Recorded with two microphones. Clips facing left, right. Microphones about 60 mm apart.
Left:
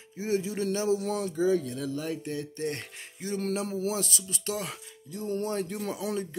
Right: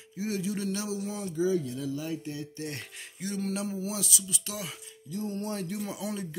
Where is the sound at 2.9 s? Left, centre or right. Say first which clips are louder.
Left 2 dB; left.